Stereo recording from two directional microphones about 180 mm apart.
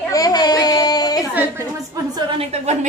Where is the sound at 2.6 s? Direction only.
40° right (ahead or behind).